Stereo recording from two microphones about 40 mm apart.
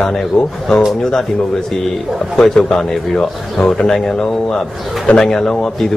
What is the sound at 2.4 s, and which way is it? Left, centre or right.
A man's voice, centre.